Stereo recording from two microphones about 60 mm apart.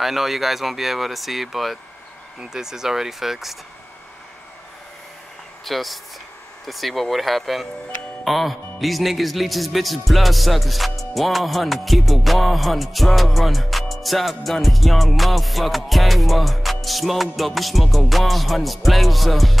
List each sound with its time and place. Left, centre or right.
0.0 s speech: centre
5.7 s speech: centre